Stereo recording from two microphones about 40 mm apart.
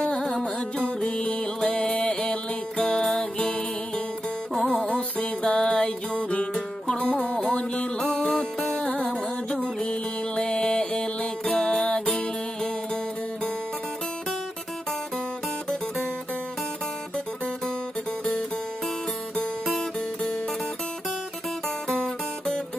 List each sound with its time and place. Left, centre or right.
0.8 s music: left
4.8 s music: left